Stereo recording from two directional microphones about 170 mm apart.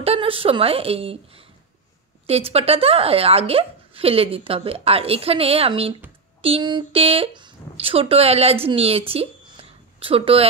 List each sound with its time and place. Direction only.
0.0 s speech: 35° right (ahead or behind)
2.2 s speech: 35° right (ahead or behind)